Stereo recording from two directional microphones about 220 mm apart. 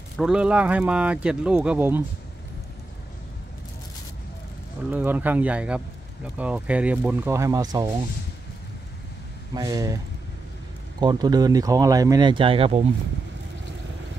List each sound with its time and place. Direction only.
0.2 s speech: 5° right (ahead or behind)
4.9 s speech: 10° right (ahead or behind)
9.5 s speech: 15° right (ahead or behind)
11.0 s speech: 20° right (ahead or behind)